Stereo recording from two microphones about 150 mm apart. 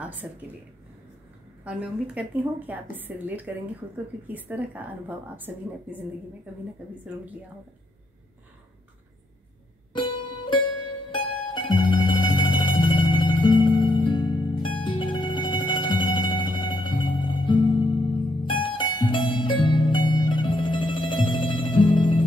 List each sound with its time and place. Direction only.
0.0 s speech: 10° right (ahead or behind)
1.6 s a woman's voice: 10° right (ahead or behind)
9.9 s music: 35° left (ahead or behind)